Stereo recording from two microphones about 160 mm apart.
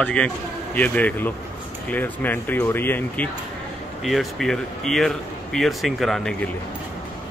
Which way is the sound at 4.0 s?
Centre (ahead or behind).